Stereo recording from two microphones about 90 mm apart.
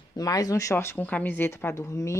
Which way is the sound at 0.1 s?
40° left (ahead or behind).